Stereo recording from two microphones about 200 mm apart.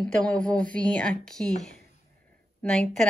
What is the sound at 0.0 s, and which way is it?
Speech, 5° left (ahead or behind).